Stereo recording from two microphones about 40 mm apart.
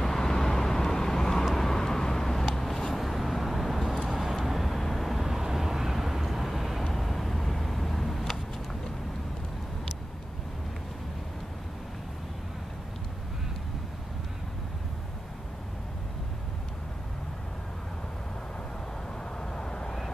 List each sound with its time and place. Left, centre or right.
0.0 s vehicle: centre
2.9 s vehicle: centre
19.4 s vehicle: centre